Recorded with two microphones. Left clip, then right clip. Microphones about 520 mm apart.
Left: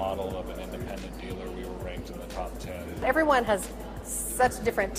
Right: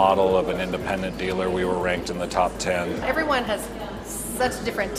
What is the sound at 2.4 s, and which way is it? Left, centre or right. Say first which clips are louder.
Speech: right 15 dB; right.